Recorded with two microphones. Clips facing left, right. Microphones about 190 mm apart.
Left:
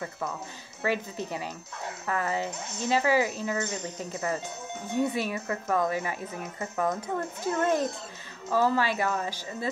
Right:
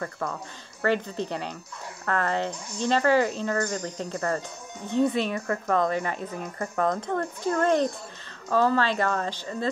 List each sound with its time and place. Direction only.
0.8 s speech: 5° left (ahead or behind)
5.3 s a woman's voice: 20° left (ahead or behind)
5.8 s speech: 10° left (ahead or behind)